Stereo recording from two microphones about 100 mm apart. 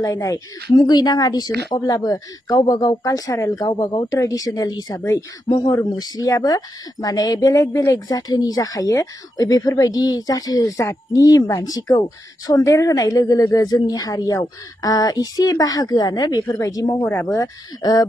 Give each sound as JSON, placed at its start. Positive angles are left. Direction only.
{"t": 0.0, "sound": "speech", "side_deg": 35}
{"t": 4.1, "sound": "speech", "side_deg": 35}
{"t": 5.5, "sound": "speech", "side_deg": 45}
{"t": 17.0, "sound": "speech", "side_deg": 25}